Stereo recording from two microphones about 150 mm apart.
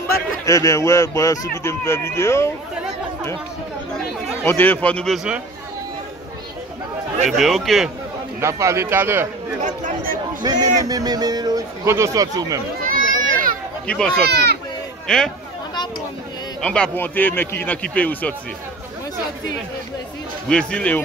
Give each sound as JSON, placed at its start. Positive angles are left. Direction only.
{"t": 0.5, "sound": "speech", "side_deg": 20}
{"t": 4.5, "sound": "speech", "side_deg": 10}
{"t": 7.2, "sound": "a man's voice", "side_deg": 0}
{"t": 8.4, "sound": "a man's voice", "side_deg": -20}
{"t": 9.6, "sound": "speech", "side_deg": -55}
{"t": 10.4, "sound": "a man's voice", "side_deg": -25}
{"t": 12.8, "sound": "children playing", "side_deg": -65}
{"t": 13.8, "sound": "speech", "side_deg": 5}
{"t": 14.2, "sound": "speech", "side_deg": -90}
{"t": 15.0, "sound": "a man's voice", "side_deg": 5}
{"t": 16.6, "sound": "speech", "side_deg": 5}
{"t": 20.4, "sound": "speech", "side_deg": 5}